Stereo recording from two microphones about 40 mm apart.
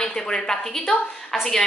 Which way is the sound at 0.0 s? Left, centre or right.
Centre.